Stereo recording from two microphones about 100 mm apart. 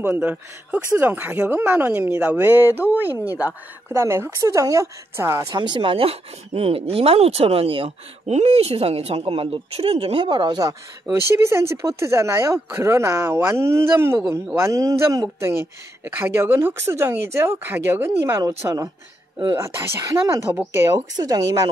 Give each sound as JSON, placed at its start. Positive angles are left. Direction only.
{"t": 0.0, "sound": "speech", "side_deg": -20}
{"t": 3.9, "sound": "speech", "side_deg": -25}
{"t": 5.5, "sound": "speech", "side_deg": -50}
{"t": 10.2, "sound": "speech", "side_deg": -50}
{"t": 16.0, "sound": "speech", "side_deg": -20}
{"t": 19.5, "sound": "speech", "side_deg": -30}
{"t": 21.2, "sound": "speech", "side_deg": -40}